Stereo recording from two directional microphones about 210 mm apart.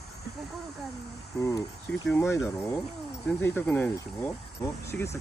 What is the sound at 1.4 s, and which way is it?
Speech, 15° left (ahead or behind).